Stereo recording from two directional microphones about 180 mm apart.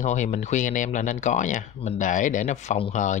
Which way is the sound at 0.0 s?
40° left (ahead or behind).